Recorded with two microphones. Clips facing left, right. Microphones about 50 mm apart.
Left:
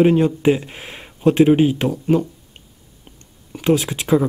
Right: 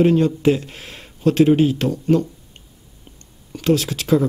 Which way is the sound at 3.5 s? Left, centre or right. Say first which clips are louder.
Left 1 dB; centre.